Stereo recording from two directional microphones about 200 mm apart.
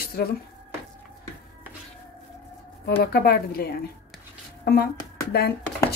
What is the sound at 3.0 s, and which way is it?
A woman's voice, 50° left (ahead or behind).